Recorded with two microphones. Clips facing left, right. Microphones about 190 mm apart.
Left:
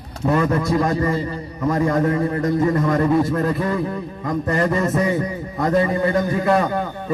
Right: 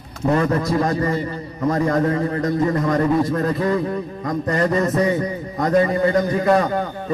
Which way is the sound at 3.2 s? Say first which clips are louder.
Even; 20° right (ahead or behind).